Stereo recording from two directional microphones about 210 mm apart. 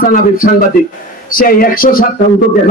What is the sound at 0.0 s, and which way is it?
A man's voice, 40° left (ahead or behind).